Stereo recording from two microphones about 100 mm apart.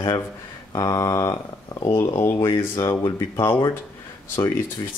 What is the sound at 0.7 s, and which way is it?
Speech, 40° left (ahead or behind).